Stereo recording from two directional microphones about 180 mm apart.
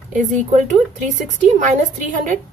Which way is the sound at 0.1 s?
45° right (ahead or behind).